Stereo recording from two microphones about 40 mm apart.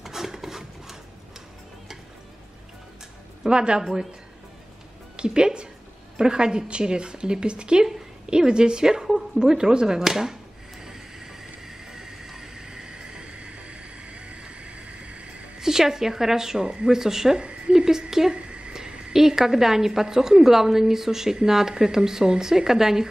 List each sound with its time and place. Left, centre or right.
0.0 s filing: centre
3.4 s a woman's voice: right
5.1 s a woman's voice: right
10.8 s vehicle: centre; by 15.4 s right
15.6 s a woman's voice: centre
17.4 s a woman's voice: right
17.7 s a woman's voice: centre
18.3 s a sound: right
18.7 s a sound: centre
19.1 s a woman's voice: centre